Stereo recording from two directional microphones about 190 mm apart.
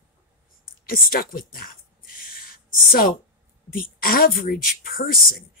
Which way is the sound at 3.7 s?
50° left (ahead or behind).